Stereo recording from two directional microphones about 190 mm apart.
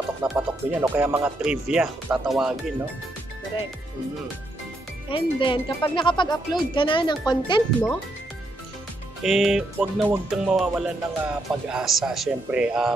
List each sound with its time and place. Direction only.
0.2 s a man's voice: 5° right (ahead or behind)
5.1 s speech: 25° left (ahead or behind)
9.2 s a man's voice: centre (ahead or behind)